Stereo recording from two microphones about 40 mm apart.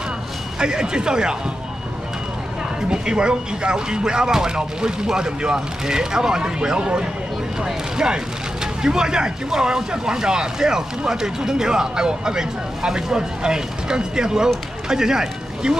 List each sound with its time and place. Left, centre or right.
0.6 s speech: centre
2.9 s speech: right